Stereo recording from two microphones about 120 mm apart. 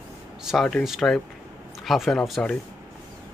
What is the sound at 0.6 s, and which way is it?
Speech, centre (ahead or behind).